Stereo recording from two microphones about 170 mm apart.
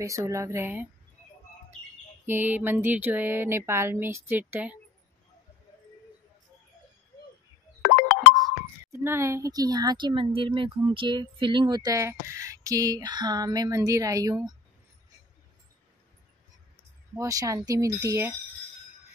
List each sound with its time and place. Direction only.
0.0 s speech: 20° right (ahead or behind)
2.2 s speech: 10° right (ahead or behind)
7.8 s music: 60° left (ahead or behind)
8.9 s speech: 15° right (ahead or behind)
17.1 s speech: 20° right (ahead or behind)